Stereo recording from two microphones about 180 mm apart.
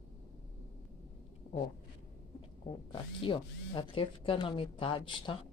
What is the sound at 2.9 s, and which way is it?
Speech, 30° left (ahead or behind).